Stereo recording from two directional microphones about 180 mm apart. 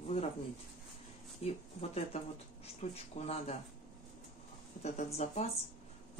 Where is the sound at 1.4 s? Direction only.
35° left (ahead or behind).